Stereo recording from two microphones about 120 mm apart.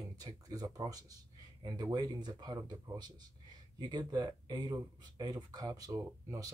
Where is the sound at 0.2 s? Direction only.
30° right (ahead or behind).